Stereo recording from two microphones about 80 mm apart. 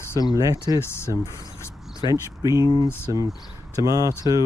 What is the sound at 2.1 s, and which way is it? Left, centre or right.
Speech, right.